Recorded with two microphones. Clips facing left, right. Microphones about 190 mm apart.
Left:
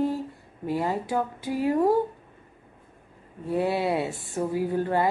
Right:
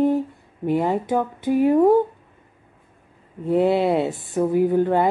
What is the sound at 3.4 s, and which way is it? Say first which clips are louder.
Speech: right 7 dB; 20° right (ahead or behind).